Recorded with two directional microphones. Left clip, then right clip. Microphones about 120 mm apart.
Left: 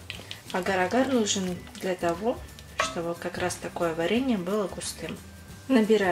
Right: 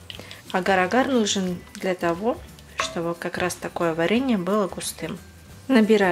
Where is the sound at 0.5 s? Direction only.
45° right (ahead or behind).